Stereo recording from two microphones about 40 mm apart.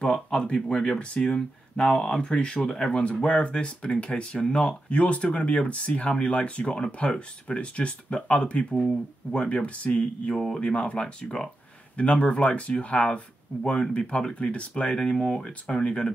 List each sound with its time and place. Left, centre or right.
0.0 s speech: left